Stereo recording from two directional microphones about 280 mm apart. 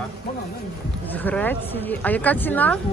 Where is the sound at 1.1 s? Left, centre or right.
Centre.